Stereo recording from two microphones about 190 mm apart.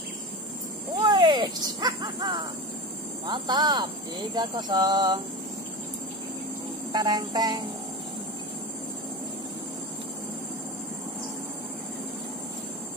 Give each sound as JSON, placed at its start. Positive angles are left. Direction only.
{"t": 0.9, "sound": "a sound", "side_deg": -20}
{"t": 3.3, "sound": "speech", "side_deg": -25}
{"t": 6.9, "sound": "speech", "side_deg": -20}